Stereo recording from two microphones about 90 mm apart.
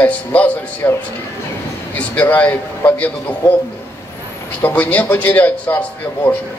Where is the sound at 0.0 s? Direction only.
15° left (ahead or behind).